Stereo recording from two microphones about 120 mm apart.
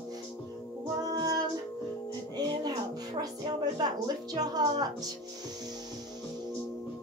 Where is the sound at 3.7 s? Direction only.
35° right (ahead or behind).